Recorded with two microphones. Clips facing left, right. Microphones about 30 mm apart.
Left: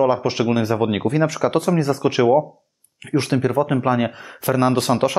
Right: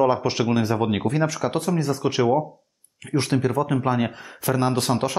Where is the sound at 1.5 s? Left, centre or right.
Left.